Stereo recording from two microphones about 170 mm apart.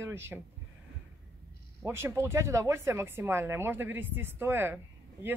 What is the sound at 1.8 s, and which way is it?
Speech, 15° right (ahead or behind).